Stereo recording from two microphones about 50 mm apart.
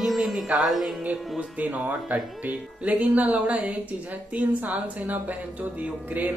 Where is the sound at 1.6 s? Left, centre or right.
Right.